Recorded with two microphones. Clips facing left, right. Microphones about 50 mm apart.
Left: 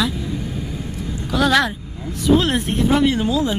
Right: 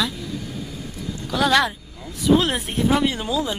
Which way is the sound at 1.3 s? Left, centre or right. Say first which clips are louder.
Left 2 dB; centre.